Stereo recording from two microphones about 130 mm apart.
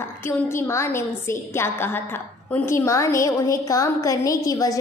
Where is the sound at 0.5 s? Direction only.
20° left (ahead or behind).